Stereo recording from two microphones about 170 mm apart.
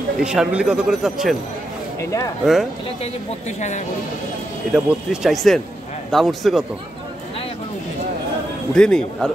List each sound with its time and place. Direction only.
0.2 s speech: 5° right (ahead or behind)
2.0 s speech: 15° left (ahead or behind)
3.0 s a woman's voice: 45° left (ahead or behind)
4.7 s speech: 5° right (ahead or behind)
8.7 s speech: 5° left (ahead or behind)